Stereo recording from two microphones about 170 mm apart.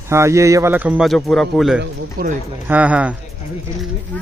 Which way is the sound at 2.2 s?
60° right (ahead or behind).